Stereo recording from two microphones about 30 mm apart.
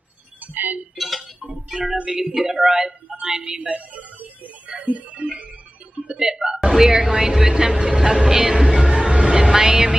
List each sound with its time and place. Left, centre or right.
0.4 s music: right
0.9 s chink: centre
1.4 s a sound: right
2.0 s speech: right
4.6 s music: right
6.1 s a woman's voice: right
8.7 s music: right